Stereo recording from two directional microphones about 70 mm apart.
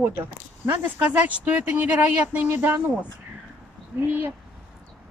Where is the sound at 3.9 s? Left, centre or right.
Right.